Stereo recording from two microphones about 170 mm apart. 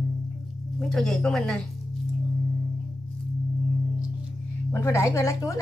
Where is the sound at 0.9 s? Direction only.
Centre (ahead or behind).